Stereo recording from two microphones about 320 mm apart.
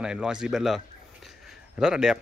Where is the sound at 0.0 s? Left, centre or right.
Centre.